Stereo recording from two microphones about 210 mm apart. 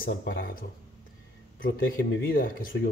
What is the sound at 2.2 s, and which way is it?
Speech, 45° left (ahead or behind).